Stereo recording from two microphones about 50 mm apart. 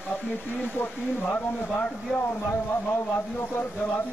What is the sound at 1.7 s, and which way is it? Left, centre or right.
Speech, left.